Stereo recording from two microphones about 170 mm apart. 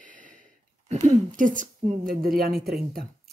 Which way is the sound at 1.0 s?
50° right (ahead or behind).